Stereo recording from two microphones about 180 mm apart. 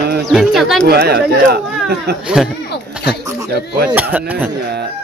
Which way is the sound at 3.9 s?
10° right (ahead or behind).